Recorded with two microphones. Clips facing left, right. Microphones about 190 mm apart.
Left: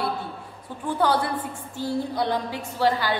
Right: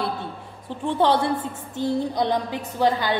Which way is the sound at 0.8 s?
25° right (ahead or behind).